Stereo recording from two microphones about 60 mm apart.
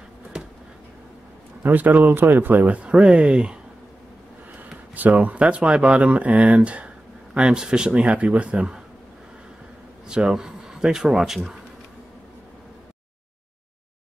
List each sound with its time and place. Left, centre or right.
1.6 s speech: right
4.9 s speech: right
10.0 s a man's voice: centre